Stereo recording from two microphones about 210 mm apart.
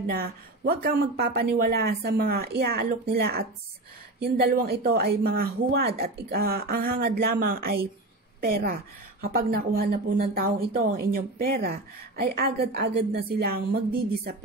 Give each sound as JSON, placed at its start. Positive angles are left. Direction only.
{"t": 0.0, "sound": "a woman's voice", "side_deg": -45}